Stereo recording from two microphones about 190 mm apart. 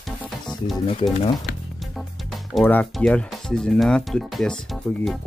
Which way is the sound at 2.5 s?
5° left (ahead or behind).